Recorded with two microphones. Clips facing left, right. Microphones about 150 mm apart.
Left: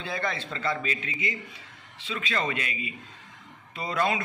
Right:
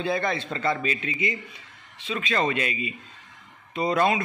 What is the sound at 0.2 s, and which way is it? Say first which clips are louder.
A man's voice: right 4 dB; 20° right (ahead or behind).